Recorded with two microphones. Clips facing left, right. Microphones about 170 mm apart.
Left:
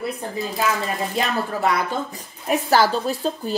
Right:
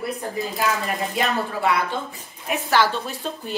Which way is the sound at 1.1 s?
40° left (ahead or behind).